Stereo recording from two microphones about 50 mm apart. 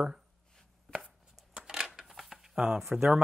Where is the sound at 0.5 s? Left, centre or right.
Centre.